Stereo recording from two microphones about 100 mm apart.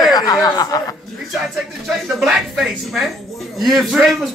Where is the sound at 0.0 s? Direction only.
40° left (ahead or behind).